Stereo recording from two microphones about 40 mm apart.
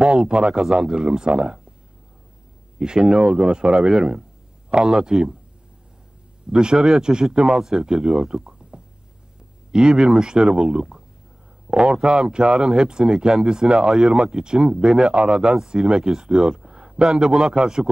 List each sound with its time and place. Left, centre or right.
0.0 s speech: centre
2.8 s speech: centre
4.9 s speech: centre
6.5 s speech: centre
14.1 s a man's voice: right